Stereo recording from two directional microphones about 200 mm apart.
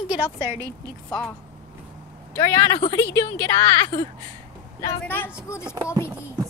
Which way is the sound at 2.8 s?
20° left (ahead or behind).